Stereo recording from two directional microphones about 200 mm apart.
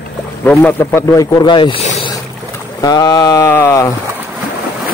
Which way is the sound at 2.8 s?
20° left (ahead or behind).